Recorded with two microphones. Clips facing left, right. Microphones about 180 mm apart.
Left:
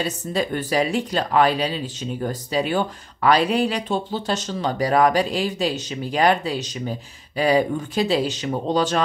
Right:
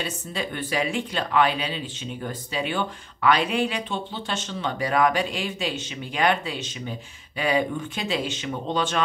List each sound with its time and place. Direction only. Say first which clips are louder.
0.0 s speech: left 6 dB; 40° left (ahead or behind)